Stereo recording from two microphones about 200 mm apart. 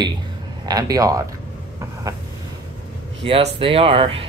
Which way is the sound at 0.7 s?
20° right (ahead or behind).